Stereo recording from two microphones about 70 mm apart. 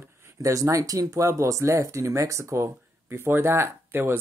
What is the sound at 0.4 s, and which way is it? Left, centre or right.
Speech, right.